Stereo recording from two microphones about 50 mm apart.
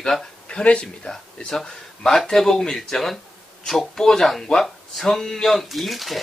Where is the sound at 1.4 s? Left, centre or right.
Centre.